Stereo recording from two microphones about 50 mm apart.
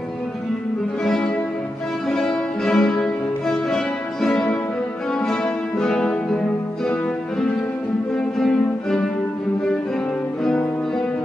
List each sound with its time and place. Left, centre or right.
1.0 s music: centre
4.3 s music: left
5.2 s music: centre